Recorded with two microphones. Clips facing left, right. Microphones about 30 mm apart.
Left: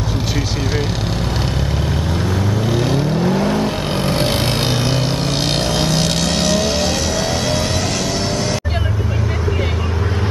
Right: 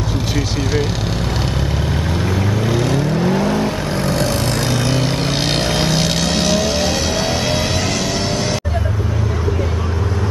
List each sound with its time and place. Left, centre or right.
2.6 s vehicle: centre
3.9 s vehicle: left
4.9 s vehicle: centre